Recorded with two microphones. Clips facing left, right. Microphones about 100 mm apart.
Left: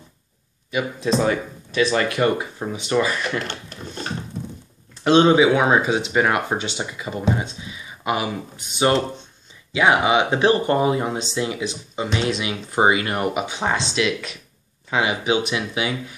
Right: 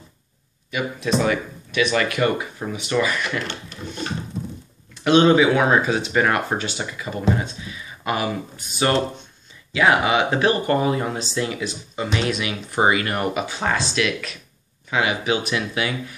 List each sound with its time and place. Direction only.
0.7 s speech: 25° left (ahead or behind)
5.0 s speech: 30° left (ahead or behind)
5.3 s speech: 20° left (ahead or behind)